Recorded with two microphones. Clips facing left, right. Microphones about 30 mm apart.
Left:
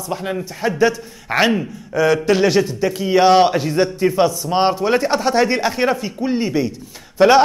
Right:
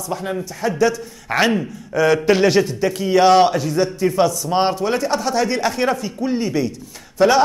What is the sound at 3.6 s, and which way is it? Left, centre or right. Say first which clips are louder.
Speech: left 1 dB; left.